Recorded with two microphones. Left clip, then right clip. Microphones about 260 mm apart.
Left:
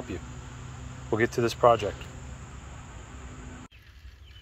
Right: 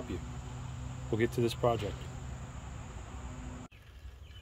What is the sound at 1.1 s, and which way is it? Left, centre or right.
Speech, centre.